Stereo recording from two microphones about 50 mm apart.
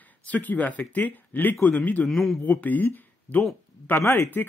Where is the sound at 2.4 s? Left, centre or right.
Left.